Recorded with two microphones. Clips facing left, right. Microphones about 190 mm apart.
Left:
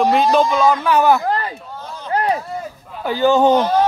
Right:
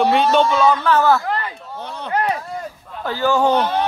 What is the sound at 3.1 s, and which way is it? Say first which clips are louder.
Speech: left 4 dB; 20° left (ahead or behind).